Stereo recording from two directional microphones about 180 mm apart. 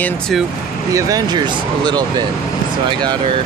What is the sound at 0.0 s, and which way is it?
Speech, centre (ahead or behind).